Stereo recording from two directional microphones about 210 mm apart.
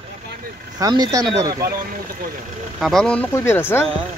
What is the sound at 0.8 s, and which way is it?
Speech, 15° right (ahead or behind).